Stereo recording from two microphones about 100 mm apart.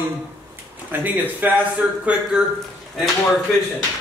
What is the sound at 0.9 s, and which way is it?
Speech, 20° right (ahead or behind).